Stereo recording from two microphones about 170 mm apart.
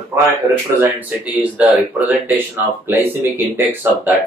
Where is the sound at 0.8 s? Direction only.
10° right (ahead or behind).